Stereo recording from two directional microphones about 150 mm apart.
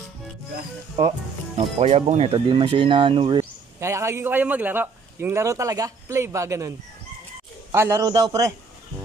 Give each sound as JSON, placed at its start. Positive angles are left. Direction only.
{"t": 1.8, "sound": "speech", "side_deg": -45}
{"t": 2.3, "sound": "speech", "side_deg": -30}
{"t": 3.3, "sound": "a man's voice", "side_deg": -20}
{"t": 7.7, "sound": "a man's voice", "side_deg": -15}